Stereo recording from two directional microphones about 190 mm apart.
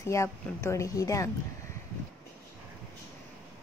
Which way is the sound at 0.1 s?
15° left (ahead or behind).